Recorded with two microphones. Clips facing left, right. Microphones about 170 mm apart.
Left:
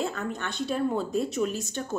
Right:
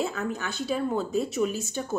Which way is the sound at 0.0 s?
5° right (ahead or behind).